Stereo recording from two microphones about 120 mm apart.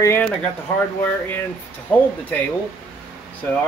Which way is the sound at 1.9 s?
10° left (ahead or behind).